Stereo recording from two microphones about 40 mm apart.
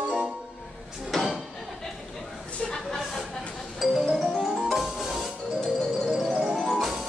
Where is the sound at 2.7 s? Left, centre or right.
Centre.